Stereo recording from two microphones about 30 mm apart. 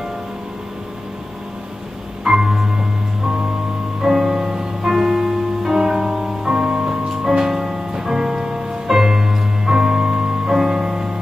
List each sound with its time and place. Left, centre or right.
2.2 s music: right
4.0 s music: centre; by 7.0 s right
7.2 s music: centre